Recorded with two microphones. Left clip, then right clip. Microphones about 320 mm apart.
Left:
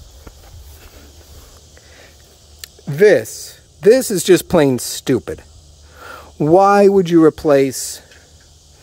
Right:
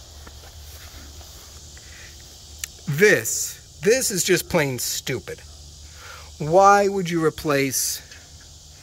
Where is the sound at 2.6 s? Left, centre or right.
Centre.